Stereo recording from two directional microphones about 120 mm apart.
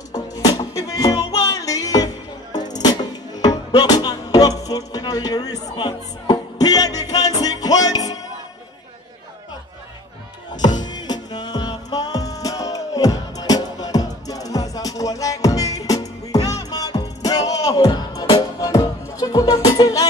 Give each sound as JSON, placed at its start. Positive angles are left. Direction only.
{"t": 0.1, "sound": "music", "side_deg": 30}
{"t": 10.6, "sound": "music", "side_deg": 35}